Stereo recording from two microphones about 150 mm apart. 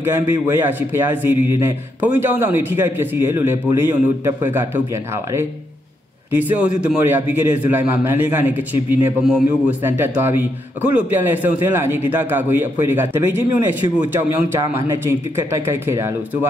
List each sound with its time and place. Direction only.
0.0 s speech: 15° right (ahead or behind)